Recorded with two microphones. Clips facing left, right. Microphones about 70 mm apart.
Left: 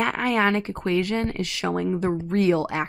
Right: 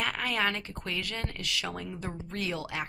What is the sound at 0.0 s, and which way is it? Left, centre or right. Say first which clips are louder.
Speech: left 8 dB; left.